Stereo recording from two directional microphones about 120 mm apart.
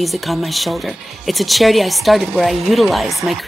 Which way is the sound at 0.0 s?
Centre (ahead or behind).